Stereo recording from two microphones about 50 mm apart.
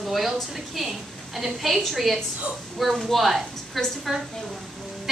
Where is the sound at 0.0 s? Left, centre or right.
Centre.